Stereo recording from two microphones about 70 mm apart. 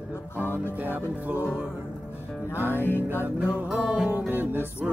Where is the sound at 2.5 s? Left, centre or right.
Right.